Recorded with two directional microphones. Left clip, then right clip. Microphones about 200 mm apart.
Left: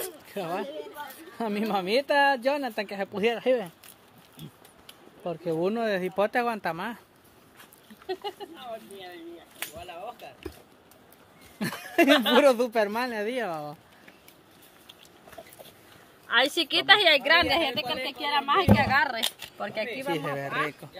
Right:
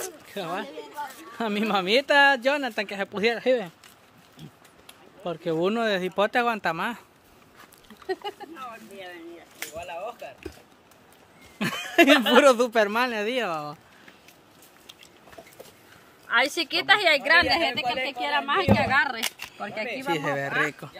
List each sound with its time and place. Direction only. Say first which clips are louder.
0.0 s a sound: right 1 dB; 5° left (ahead or behind)
1.4 s speech: right 3 dB; 15° right (ahead or behind)
4.4 s music: left 1 dB; 20° left (ahead or behind)
5.2 s speech: right 2 dB; 10° right (ahead or behind)
8.1 s speech: right 2 dB; centre (ahead or behind)
11.5 s speech: right 4 dB; 15° right (ahead or behind)
16.3 s a woman's voice: even; 20° left (ahead or behind)
20.2 s speech: right 4 dB; 20° right (ahead or behind)
20.8 s speech: right 4 dB; 35° right (ahead or behind)